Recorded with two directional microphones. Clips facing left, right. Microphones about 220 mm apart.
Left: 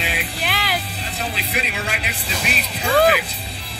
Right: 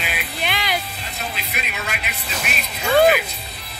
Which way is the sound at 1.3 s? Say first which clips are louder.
Left 4 dB; 30° left (ahead or behind).